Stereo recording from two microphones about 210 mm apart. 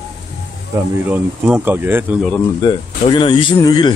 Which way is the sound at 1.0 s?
10° right (ahead or behind).